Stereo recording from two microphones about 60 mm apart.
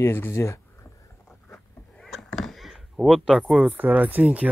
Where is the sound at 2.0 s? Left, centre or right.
Centre.